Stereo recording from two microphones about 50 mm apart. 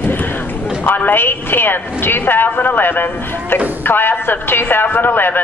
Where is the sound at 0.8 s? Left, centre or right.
Left.